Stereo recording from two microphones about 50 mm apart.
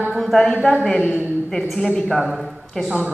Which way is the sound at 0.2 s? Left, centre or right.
Centre.